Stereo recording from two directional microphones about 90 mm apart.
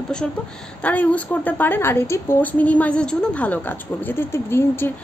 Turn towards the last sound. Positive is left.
turn(degrees=25)  # may be behind; listen again after turning